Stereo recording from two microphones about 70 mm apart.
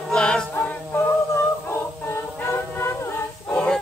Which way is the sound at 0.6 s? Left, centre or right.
Left.